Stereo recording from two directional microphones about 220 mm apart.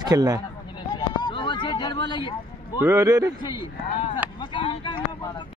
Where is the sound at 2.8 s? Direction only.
10° right (ahead or behind).